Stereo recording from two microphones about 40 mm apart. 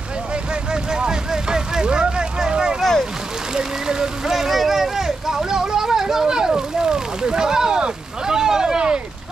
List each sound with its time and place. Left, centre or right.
0.7 s vehicle: right